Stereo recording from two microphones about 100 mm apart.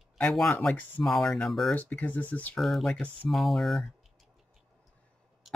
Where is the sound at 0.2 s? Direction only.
5° left (ahead or behind).